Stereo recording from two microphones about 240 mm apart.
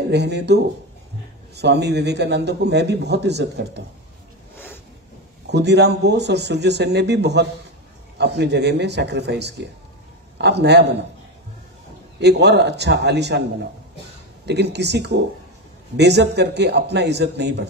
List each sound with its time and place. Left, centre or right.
0.1 s a man's voice: right
5.5 s a man's voice: right
12.2 s a man's voice: right
14.4 s a man's voice: right